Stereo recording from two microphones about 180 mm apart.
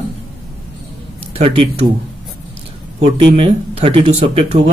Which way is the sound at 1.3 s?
35° right (ahead or behind).